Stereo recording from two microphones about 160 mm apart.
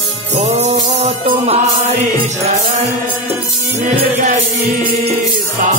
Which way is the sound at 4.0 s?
45° right (ahead or behind).